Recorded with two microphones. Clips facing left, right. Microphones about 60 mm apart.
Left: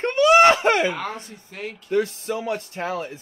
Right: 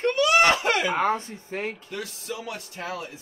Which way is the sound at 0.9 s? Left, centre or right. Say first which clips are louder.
Right 6 dB; right.